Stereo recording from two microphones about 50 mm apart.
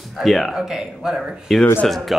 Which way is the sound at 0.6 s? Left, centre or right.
Centre.